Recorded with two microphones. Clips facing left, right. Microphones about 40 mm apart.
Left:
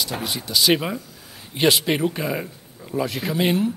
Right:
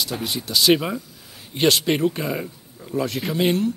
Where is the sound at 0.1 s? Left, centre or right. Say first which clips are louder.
Even; left.